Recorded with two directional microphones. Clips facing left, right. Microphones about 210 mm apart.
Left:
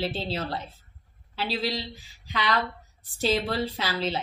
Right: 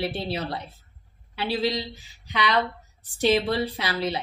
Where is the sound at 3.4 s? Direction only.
15° right (ahead or behind).